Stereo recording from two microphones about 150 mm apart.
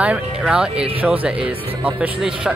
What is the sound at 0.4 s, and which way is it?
Speech, 5° right (ahead or behind).